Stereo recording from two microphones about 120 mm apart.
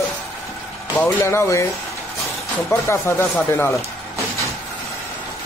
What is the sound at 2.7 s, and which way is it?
Speech, 20° left (ahead or behind).